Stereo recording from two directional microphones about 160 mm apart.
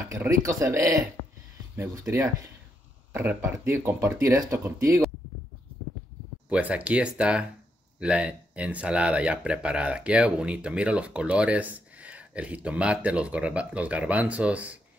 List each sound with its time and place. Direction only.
0.1 s speech: 20° right (ahead or behind)
6.5 s speech: 5° right (ahead or behind)